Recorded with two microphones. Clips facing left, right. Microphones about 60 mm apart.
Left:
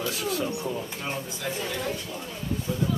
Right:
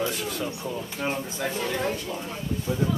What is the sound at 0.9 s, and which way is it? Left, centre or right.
Speech, right.